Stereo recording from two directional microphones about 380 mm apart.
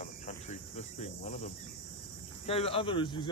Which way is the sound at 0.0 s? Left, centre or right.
Centre.